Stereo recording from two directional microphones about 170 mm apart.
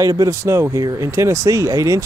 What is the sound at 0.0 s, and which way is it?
Speech, 20° right (ahead or behind).